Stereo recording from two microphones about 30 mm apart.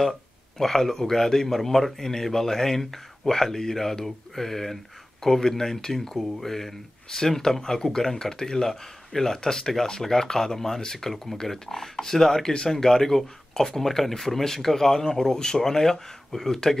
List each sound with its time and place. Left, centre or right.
0.0 s speech: centre